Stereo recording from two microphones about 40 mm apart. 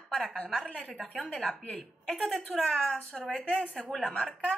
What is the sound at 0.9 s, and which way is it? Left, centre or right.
A woman's voice, centre.